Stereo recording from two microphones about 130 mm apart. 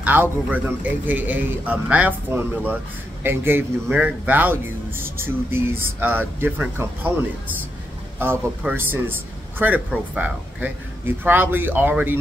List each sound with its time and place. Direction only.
0.0 s a man's voice: 15° right (ahead or behind)